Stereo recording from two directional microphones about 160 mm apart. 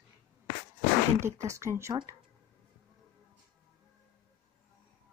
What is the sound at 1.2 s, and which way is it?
Speech, 20° right (ahead or behind).